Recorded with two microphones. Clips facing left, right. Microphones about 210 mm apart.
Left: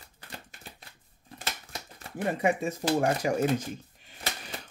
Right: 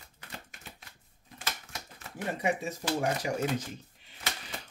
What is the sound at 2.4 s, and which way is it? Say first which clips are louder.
Speech: left 3 dB; 50° left (ahead or behind).